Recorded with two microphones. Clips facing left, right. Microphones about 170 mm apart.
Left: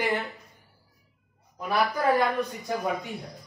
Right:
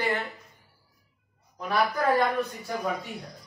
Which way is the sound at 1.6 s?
10° left (ahead or behind).